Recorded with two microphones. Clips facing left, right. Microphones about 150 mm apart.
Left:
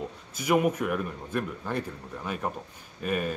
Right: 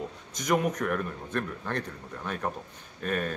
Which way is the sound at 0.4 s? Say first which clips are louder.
Left 2 dB; 10° left (ahead or behind).